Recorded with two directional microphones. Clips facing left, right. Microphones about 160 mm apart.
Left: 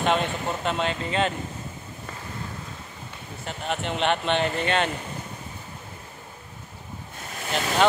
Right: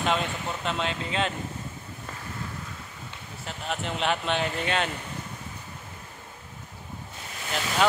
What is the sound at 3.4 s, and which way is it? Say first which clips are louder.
Speech: left 3 dB; centre (ahead or behind).